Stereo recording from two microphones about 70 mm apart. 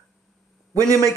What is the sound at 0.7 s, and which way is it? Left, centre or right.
Speech, right.